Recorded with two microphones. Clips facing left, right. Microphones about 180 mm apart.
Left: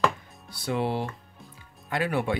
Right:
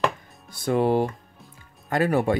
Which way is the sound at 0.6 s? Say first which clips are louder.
Right 7 dB; 45° right (ahead or behind).